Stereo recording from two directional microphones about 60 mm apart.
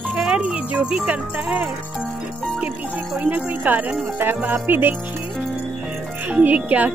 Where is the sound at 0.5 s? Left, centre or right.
Right.